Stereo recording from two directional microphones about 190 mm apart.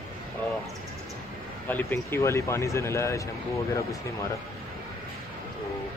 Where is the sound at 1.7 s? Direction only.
10° left (ahead or behind).